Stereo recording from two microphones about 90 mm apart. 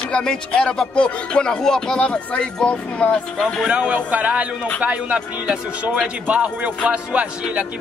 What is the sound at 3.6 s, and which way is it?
Speech, 15° right (ahead or behind).